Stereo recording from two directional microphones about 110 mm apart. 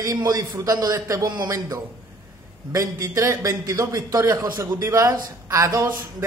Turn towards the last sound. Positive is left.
turn(degrees=-30)  # may be behind; listen again after turning